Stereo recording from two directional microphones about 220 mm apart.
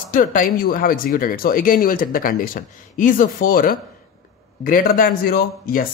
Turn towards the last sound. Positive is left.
turn(degrees=40)  # may be behind; listen again after turning